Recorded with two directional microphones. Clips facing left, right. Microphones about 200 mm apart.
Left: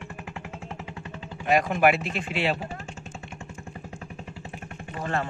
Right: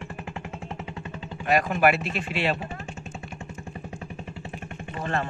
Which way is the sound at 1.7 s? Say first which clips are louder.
Even; 15° left (ahead or behind).